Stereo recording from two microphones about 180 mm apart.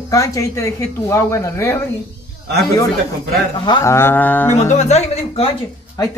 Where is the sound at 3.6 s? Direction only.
20° left (ahead or behind).